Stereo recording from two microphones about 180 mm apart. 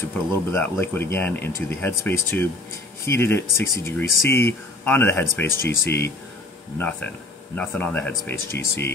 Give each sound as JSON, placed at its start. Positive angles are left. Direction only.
{"t": 0.5, "sound": "speech", "side_deg": 10}
{"t": 5.6, "sound": "speech", "side_deg": 65}
{"t": 6.8, "sound": "speech", "side_deg": 10}